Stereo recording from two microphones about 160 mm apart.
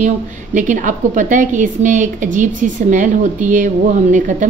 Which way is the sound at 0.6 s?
55° right (ahead or behind).